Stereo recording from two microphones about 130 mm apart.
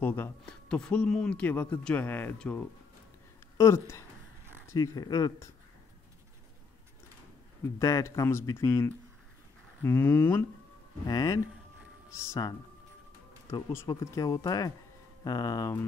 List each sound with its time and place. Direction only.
0.0 s speech: 15° left (ahead or behind)
3.5 s speech: 20° left (ahead or behind)
7.6 s speech: 25° left (ahead or behind)
11.1 s speech: 30° left (ahead or behind)